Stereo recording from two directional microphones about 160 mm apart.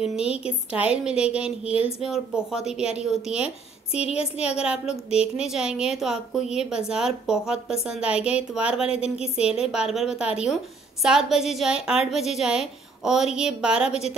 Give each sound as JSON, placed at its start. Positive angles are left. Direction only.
{"t": 0.0, "sound": "a woman's voice", "side_deg": -5}
{"t": 3.9, "sound": "speech", "side_deg": 40}
{"t": 4.4, "sound": "a woman's voice", "side_deg": -5}